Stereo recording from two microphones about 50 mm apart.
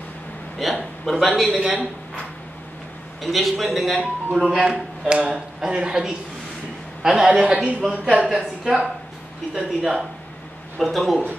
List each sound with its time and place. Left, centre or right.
0.6 s a man's voice: centre
1.6 s speech: centre
3.2 s a man's voice: centre
4.4 s speech: centre
5.0 s a man's voice: right
8.0 s speech: right
10.8 s a man's voice: centre